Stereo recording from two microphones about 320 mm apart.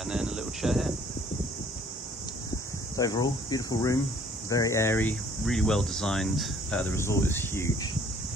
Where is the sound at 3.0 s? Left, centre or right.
Centre.